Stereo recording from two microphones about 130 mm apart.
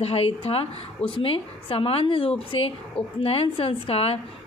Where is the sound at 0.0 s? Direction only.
50° left (ahead or behind).